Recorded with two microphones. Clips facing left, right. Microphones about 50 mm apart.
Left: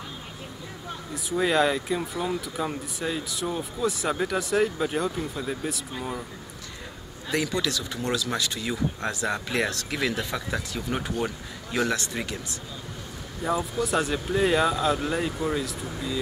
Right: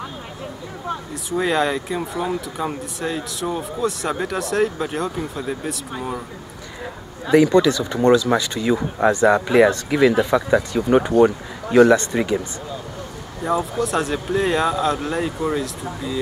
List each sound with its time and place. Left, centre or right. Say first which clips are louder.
1.3 s speech: right 3 dB; centre
7.2 s speech: right 13 dB; centre
11.2 s speech: right 13 dB; right
13.4 s speech: right 5 dB; centre